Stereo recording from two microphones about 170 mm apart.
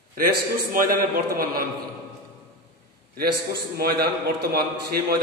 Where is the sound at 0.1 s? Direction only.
55° right (ahead or behind).